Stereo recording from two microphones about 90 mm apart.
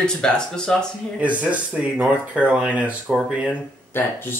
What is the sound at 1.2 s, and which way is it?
Speech, 15° right (ahead or behind).